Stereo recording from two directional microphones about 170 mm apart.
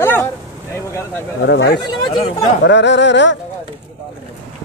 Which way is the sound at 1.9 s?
25° left (ahead or behind).